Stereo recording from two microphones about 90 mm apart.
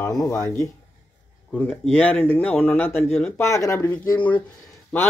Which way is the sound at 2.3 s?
20° left (ahead or behind).